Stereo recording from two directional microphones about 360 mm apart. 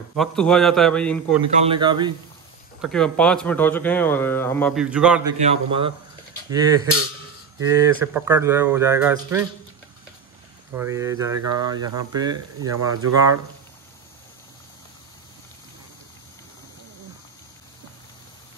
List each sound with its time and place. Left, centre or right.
0.1 s speech: centre
1.7 s speech: centre
2.8 s speech: centre
5.4 s speech: centre
10.7 s speech: centre
12.7 s speech: right